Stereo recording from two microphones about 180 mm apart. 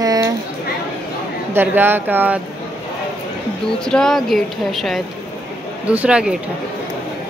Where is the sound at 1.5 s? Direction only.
10° right (ahead or behind).